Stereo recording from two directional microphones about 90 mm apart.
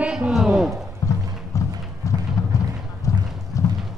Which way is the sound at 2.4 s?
35° left (ahead or behind).